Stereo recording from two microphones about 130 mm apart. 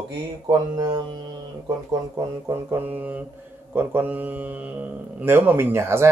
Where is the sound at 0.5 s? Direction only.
30° right (ahead or behind).